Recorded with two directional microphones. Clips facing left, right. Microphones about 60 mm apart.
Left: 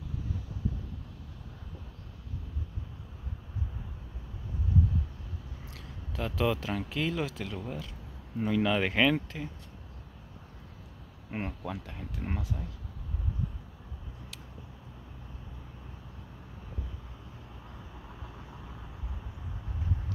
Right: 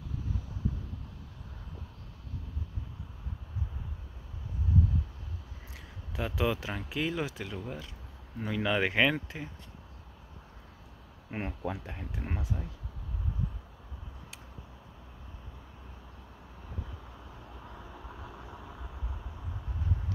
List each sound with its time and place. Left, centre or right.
5.7 s a sound: centre
6.9 s speech: centre
11.2 s speech: centre
11.6 s speech: centre
17.7 s vehicle: centre